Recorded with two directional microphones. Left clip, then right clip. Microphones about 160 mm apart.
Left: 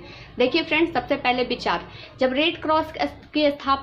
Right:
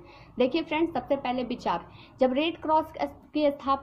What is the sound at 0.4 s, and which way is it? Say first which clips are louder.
A woman's voice: left 6 dB; 40° right (ahead or behind).